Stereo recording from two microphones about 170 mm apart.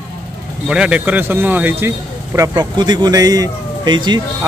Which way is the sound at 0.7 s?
5° right (ahead or behind).